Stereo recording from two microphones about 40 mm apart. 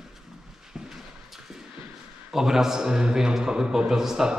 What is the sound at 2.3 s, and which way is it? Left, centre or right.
A man's voice, centre.